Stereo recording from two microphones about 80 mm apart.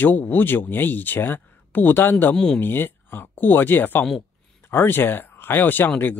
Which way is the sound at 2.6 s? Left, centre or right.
Left.